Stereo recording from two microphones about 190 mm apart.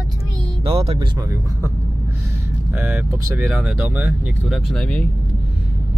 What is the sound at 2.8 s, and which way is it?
Speech, 10° right (ahead or behind).